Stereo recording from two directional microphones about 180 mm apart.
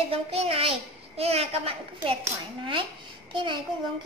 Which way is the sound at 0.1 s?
30° right (ahead or behind).